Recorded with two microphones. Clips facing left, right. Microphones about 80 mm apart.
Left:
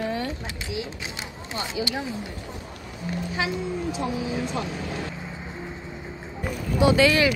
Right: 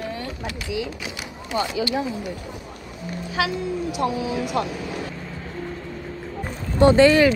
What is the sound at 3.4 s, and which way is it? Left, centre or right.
A woman's voice, right.